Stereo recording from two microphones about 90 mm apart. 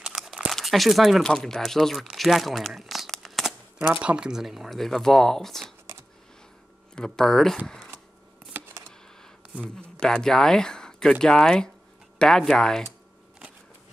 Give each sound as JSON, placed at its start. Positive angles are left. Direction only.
{"t": 0.1, "sound": "crumpling", "side_deg": -5}
{"t": 0.5, "sound": "speech", "side_deg": 0}
{"t": 4.0, "sound": "speech", "side_deg": -10}
{"t": 7.0, "sound": "speech", "side_deg": 5}
{"t": 8.5, "sound": "a sound", "side_deg": -20}
{"t": 9.8, "sound": "speech", "side_deg": 10}